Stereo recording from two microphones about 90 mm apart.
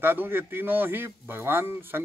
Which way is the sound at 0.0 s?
25° right (ahead or behind).